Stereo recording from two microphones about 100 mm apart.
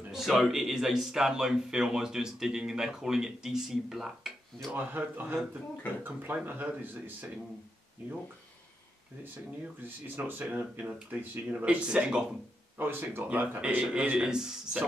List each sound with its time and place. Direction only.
0.1 s a man's voice: centre (ahead or behind)
4.7 s speech: 20° right (ahead or behind)
9.8 s speech: 20° right (ahead or behind)
12.7 s speech: 20° right (ahead or behind)